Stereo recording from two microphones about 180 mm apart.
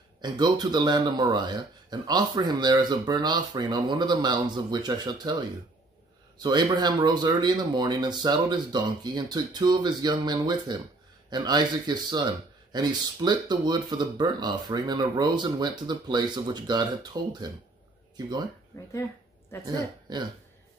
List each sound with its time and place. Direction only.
0.2 s speech: 25° right (ahead or behind)
19.6 s speech: 25° right (ahead or behind)